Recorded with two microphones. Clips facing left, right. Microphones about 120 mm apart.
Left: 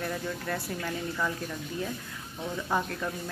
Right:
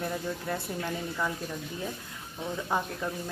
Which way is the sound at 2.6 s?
15° right (ahead or behind).